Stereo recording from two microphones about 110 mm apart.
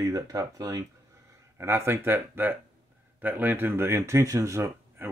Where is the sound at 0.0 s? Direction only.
35° right (ahead or behind).